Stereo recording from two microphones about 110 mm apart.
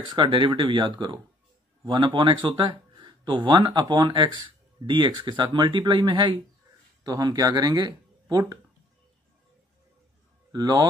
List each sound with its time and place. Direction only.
0.1 s speech: 50° right (ahead or behind)
3.0 s a sound: 45° right (ahead or behind)
3.6 s speech: 40° right (ahead or behind)
7.1 s speech: 35° right (ahead or behind)
10.5 s speech: 35° right (ahead or behind)